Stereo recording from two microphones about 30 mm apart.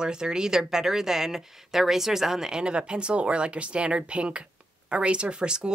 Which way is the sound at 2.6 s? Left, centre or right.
Right.